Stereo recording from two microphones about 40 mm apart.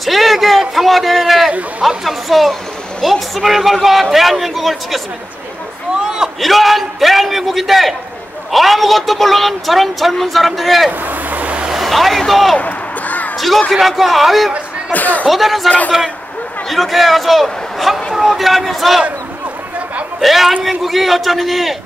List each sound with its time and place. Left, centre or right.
0.0 s a sound: centre
1.8 s a woman's voice: centre
6.0 s a sound: centre
6.4 s a woman's voice: centre
10.9 s vehicle: right
11.7 s speech: centre
12.5 s a sound: left
13.7 s a woman's voice: centre
14.9 s speech: left
15.2 s a woman's voice: centre
20.2 s a man's voice: centre